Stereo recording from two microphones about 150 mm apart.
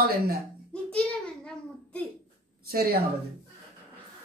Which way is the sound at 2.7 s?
90° right.